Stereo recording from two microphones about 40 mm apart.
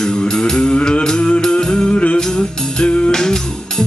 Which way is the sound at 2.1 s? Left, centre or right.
Centre.